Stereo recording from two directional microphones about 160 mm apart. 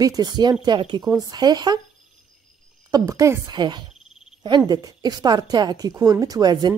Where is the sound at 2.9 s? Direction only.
20° right (ahead or behind).